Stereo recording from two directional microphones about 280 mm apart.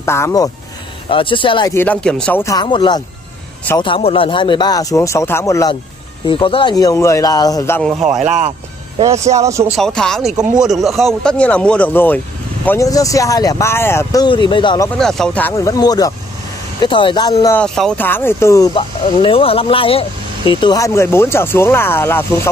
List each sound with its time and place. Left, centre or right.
0.0 s speech: centre
8.2 s speech: right
9.4 s speech: centre
9.8 s speech: centre
10.3 s speech: centre
10.6 s speech: centre
15.0 s speech: centre